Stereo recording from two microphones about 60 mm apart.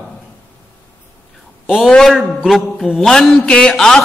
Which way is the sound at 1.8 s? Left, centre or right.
Centre.